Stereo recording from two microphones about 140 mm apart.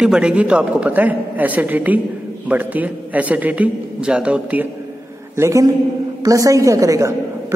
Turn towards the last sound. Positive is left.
turn(degrees=-20)  # may be behind; listen again after turning